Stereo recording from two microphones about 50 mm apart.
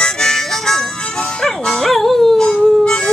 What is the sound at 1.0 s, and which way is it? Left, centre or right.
Harmonica, centre.